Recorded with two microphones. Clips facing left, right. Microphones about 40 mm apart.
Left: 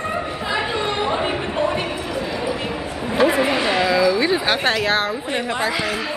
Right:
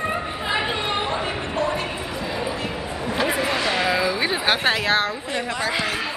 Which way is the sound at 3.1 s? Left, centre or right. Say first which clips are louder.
Left 6 dB; centre.